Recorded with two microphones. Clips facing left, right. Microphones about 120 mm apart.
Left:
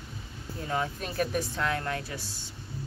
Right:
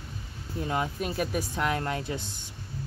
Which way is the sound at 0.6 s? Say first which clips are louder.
Right 1 dB; 15° right (ahead or behind).